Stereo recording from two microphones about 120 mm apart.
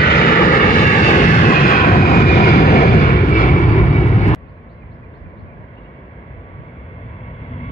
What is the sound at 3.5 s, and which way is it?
Vehicle, 90° left.